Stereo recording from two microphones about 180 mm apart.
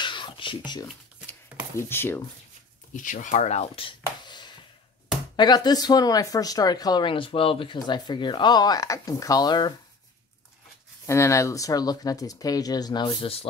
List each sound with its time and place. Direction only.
0.0 s a sound: 25° left (ahead or behind)
1.8 s speech: 10° left (ahead or behind)
2.9 s speech: 45° left (ahead or behind)
4.0 s a sound: 25° left (ahead or behind)
5.3 s speech: 25° left (ahead or behind)
11.1 s speech: 15° left (ahead or behind); by 13.5 s 30° left (ahead or behind)